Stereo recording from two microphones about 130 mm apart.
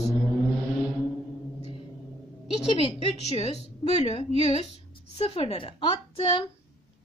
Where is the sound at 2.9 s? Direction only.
50° left (ahead or behind).